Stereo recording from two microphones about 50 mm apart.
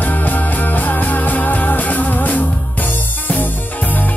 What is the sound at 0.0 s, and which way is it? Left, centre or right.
Music, left.